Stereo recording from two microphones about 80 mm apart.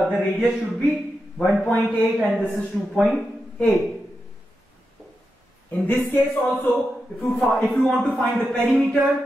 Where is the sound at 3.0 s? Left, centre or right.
Centre.